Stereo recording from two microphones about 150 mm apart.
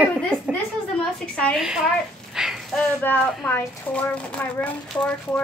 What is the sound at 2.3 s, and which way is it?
Fire, 5° right (ahead or behind).